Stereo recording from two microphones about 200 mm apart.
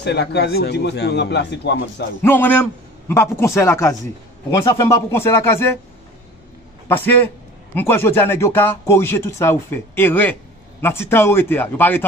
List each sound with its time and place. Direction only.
0.0 s a man's voice: 55° left (ahead or behind)
2.2 s a man's voice: 10° left (ahead or behind)
7.7 s a man's voice: 10° left (ahead or behind)